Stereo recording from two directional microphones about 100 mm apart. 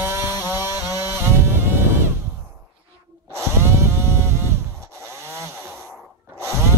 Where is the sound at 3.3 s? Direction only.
25° right (ahead or behind).